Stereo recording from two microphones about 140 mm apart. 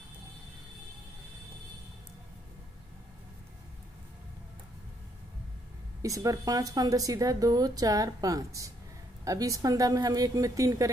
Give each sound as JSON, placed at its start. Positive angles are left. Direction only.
{"t": 6.0, "sound": "speech", "side_deg": -25}